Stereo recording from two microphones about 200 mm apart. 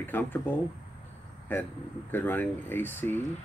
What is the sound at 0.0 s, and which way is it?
Speech, 10° left (ahead or behind).